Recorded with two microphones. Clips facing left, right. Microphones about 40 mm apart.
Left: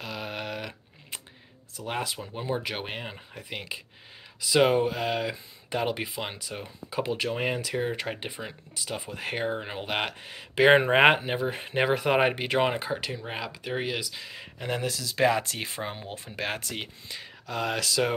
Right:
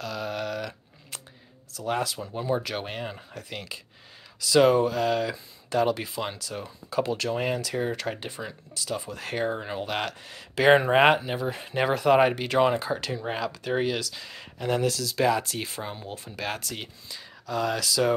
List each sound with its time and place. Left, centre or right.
0.0 s typing: left
1.7 s speech: left
15.1 s speech: left